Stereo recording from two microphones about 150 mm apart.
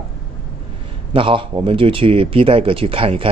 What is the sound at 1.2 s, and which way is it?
Speech, 35° right (ahead or behind).